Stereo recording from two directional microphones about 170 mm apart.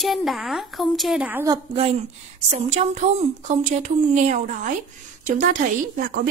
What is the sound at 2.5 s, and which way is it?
A woman's voice, 40° right (ahead or behind).